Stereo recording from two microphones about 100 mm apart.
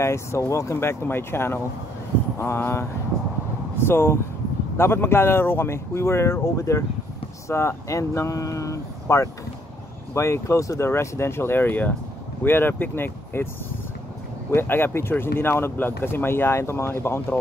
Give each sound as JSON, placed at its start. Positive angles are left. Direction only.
{"t": 0.0, "sound": "speech", "side_deg": 25}
{"t": 14.5, "sound": "speech", "side_deg": 25}